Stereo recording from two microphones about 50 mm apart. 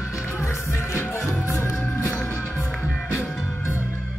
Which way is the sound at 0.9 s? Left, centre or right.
Left.